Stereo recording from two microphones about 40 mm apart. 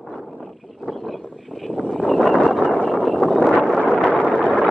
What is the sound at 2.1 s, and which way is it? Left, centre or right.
Vehicle, centre.